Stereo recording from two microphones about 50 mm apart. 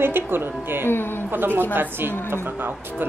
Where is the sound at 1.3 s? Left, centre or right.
Right.